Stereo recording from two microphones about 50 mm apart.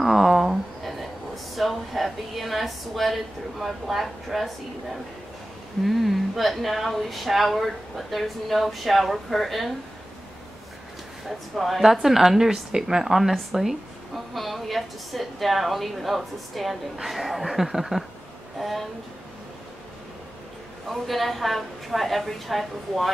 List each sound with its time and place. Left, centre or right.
0.0 s a sound: centre
5.9 s a woman's voice: centre
11.2 s a woman's voice: centre
20.9 s a woman's voice: centre